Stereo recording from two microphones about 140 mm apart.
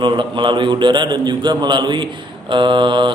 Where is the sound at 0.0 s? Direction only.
35° right (ahead or behind).